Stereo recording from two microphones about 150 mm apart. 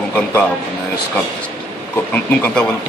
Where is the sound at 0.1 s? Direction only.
10° left (ahead or behind).